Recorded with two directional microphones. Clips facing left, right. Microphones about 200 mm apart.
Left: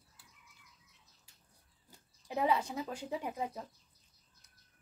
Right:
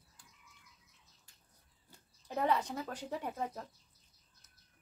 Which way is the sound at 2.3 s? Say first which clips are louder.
Left 1 dB; 10° left (ahead or behind).